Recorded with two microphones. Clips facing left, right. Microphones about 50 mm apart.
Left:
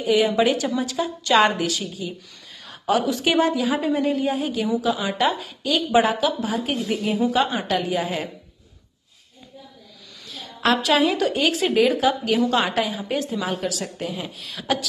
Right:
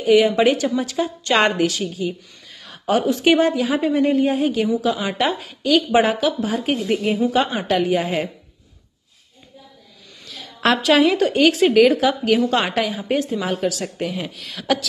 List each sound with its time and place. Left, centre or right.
0.0 s a woman's voice: right
10.6 s speech: right